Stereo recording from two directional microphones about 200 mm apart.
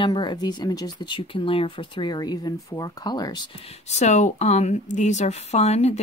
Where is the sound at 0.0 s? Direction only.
20° left (ahead or behind).